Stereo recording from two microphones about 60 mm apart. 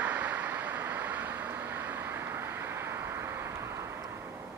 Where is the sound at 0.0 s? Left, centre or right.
Right.